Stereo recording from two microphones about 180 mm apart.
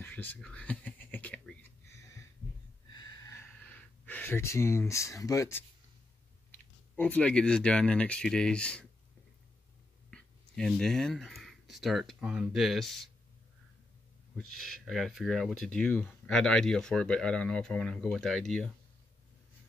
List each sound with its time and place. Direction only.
0.0 s whispering: 10° left (ahead or behind)
2.9 s a sound: 20° left (ahead or behind)
6.5 s speech: 10° left (ahead or behind)
10.1 s speech: 5° left (ahead or behind)
14.3 s speech: centre (ahead or behind)